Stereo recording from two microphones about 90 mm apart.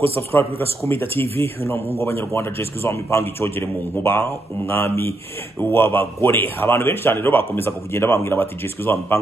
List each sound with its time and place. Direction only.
0.0 s speech: 25° left (ahead or behind)